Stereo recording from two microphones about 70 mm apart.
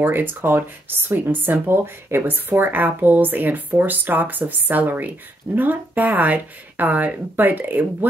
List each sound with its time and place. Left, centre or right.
0.0 s speech: right